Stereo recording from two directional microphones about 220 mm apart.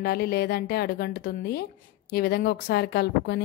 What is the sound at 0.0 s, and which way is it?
A woman's voice, 45° left (ahead or behind).